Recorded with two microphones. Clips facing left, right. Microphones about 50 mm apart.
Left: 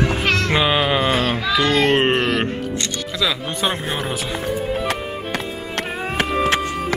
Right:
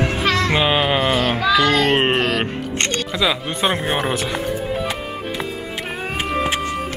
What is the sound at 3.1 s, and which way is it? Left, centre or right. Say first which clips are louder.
Speech: even; centre.